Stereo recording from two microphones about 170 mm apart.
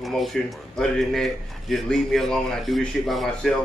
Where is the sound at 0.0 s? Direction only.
Centre (ahead or behind).